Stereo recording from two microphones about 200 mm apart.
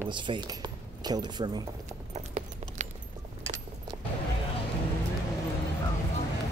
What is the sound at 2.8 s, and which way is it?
Keys jangling, 35° right (ahead or behind).